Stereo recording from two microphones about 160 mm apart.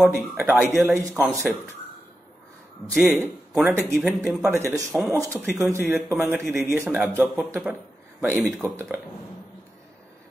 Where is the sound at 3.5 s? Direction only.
15° right (ahead or behind).